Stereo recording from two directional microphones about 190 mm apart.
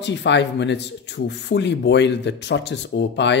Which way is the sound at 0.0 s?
70° left (ahead or behind).